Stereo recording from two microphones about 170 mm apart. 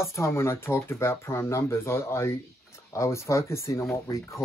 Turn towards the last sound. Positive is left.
turn(degrees=15)  # may be behind; listen again after turning